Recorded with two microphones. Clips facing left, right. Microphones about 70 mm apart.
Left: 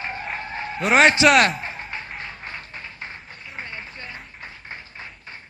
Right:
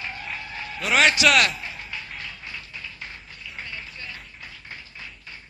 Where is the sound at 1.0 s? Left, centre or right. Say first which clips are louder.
Left 4 dB; left.